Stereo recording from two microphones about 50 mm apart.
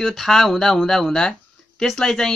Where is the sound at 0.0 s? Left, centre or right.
Centre.